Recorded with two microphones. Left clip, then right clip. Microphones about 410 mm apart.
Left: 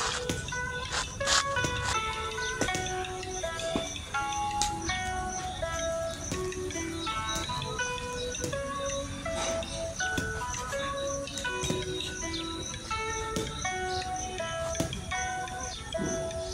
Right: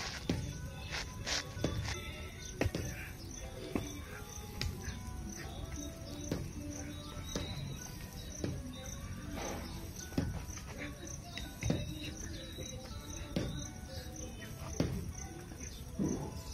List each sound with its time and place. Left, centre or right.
0.9 s music: right